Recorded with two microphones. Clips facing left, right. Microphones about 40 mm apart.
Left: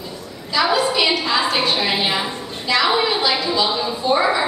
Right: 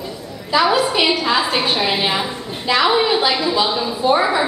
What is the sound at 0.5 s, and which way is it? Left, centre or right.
A woman's voice, centre.